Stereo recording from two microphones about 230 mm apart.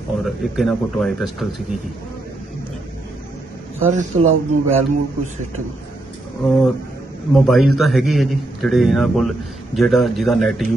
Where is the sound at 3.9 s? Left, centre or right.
Right.